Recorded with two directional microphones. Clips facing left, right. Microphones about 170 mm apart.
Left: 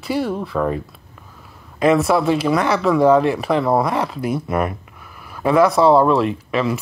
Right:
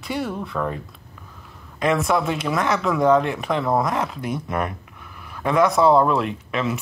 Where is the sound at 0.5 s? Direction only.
15° left (ahead or behind).